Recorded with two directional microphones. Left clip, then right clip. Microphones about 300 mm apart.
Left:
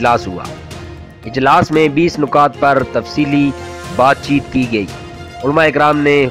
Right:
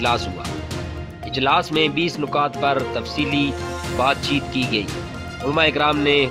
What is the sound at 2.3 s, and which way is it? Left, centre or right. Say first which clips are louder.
Speech: left 9 dB; centre.